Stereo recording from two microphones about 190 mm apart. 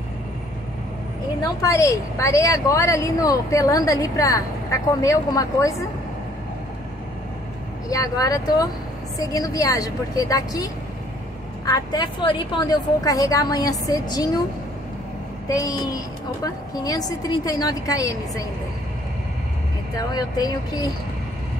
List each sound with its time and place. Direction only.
1.4 s speech: 15° left (ahead or behind)
7.9 s a woman's voice: 15° left (ahead or behind)
15.4 s a woman's voice: 15° left (ahead or behind)
20.0 s a woman's voice: 20° left (ahead or behind)